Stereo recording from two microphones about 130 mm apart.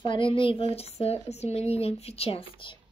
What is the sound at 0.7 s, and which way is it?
Speech, 55° left (ahead or behind).